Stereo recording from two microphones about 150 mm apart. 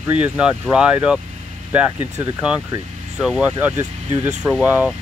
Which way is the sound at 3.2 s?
5° right (ahead or behind).